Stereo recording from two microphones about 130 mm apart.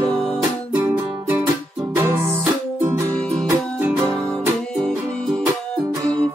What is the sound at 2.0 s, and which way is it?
Music, 15° right (ahead or behind).